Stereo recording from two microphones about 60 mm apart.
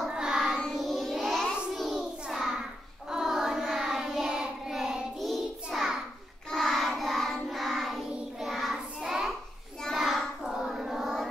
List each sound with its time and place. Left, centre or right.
0.0 s child singing: centre
0.6 s child singing: centre
2.0 s child singing: centre